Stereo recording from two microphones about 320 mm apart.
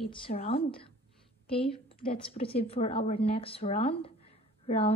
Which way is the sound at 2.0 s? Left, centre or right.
Centre.